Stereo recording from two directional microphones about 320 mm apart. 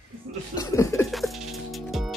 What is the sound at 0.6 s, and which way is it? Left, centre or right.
Music, centre.